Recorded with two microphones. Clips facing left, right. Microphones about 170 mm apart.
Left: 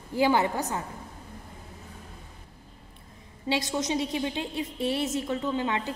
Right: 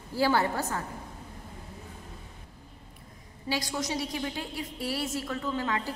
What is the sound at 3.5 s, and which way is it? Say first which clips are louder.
A woman's voice: left 4 dB; 25° left (ahead or behind).